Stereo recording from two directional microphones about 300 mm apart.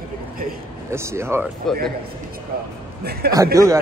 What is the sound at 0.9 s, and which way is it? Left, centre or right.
Speech, centre.